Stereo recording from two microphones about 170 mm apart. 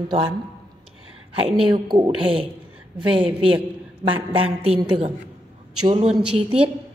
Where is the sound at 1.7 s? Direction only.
30° right (ahead or behind).